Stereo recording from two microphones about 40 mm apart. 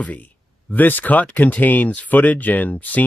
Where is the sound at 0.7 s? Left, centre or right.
Left.